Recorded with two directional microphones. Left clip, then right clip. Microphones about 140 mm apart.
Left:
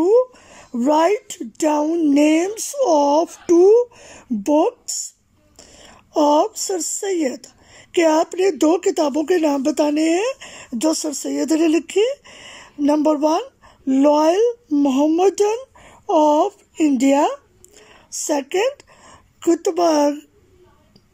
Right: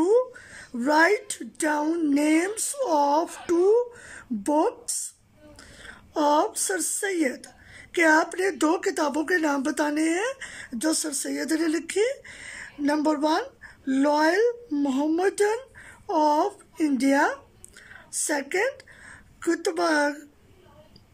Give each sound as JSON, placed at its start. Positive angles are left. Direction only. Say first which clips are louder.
{"t": 0.0, "sound": "speech", "louder": "left 6 dB", "side_deg": 20}